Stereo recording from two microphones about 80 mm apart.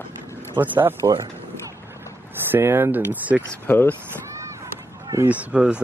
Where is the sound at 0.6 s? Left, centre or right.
Right.